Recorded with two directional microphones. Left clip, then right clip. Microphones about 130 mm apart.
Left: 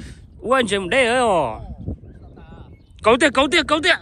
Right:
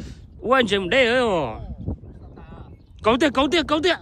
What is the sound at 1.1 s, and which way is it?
Speech, centre (ahead or behind).